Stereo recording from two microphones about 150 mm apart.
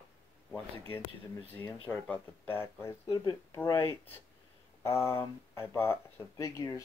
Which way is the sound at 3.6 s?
15° left (ahead or behind).